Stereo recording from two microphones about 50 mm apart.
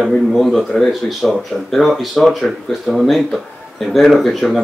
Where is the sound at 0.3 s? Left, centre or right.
Centre.